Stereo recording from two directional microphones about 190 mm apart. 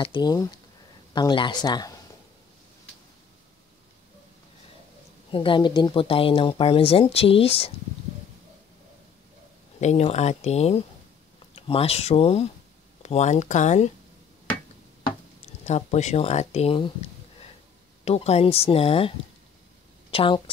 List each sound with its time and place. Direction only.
0.0 s speech: 25° left (ahead or behind)
5.3 s speech: 25° left (ahead or behind)
9.8 s speech: 35° left (ahead or behind)
15.6 s speech: 35° left (ahead or behind)
20.1 s a sound: 30° left (ahead or behind)